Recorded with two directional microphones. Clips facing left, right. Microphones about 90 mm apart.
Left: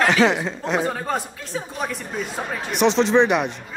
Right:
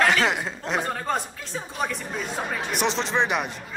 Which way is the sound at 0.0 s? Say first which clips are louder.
Left 4 dB; centre (ahead or behind).